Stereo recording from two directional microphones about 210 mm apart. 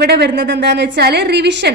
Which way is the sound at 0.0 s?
50° right (ahead or behind).